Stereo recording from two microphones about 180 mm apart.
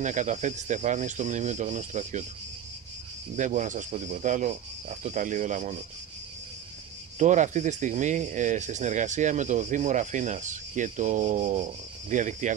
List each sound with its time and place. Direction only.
0.0 s speech: 45° right (ahead or behind)
3.3 s speech: 45° right (ahead or behind)
7.2 s speech: 40° right (ahead or behind)